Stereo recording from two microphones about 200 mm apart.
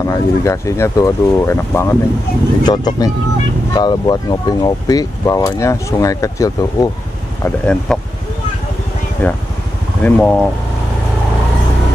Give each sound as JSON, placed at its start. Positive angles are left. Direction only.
{"t": 0.0, "sound": "speech", "side_deg": 15}
{"t": 7.4, "sound": "speech", "side_deg": 5}
{"t": 9.2, "sound": "speech", "side_deg": 10}